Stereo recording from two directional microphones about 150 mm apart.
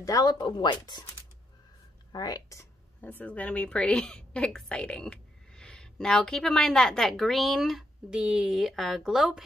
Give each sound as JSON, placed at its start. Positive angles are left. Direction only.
{"t": 0.0, "sound": "speech", "side_deg": 25}
{"t": 2.1, "sound": "speech", "side_deg": 25}
{"t": 3.0, "sound": "a woman's voice", "side_deg": 10}